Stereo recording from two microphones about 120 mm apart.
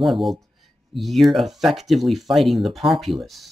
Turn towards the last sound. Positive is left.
turn(degrees=0)  # may be behind; listen again after turning